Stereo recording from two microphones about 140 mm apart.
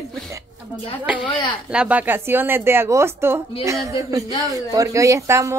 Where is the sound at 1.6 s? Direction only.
10° right (ahead or behind).